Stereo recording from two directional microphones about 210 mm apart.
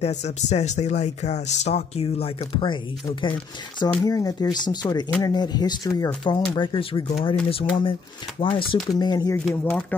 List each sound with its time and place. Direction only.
0.0 s speech: 35° left (ahead or behind); by 9.4 s 20° left (ahead or behind)
9.5 s speech: 5° left (ahead or behind)